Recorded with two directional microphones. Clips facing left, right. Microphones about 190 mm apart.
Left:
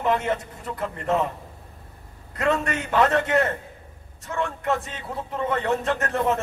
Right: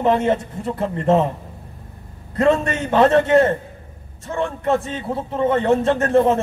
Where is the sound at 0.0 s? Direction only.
30° right (ahead or behind).